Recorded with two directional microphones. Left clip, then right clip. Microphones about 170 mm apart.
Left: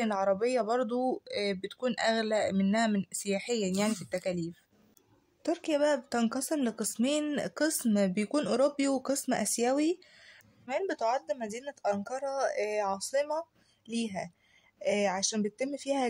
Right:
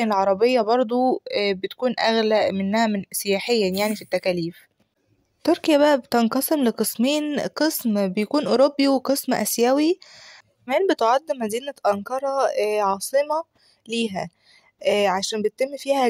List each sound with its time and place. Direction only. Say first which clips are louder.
0.0 s a woman's voice: right 10 dB; 35° right (ahead or behind)